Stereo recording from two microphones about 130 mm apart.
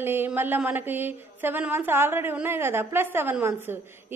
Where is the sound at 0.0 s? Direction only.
15° right (ahead or behind).